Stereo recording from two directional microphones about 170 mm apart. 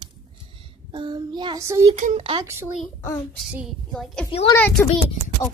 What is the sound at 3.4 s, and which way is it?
A woman's voice, 5° right (ahead or behind).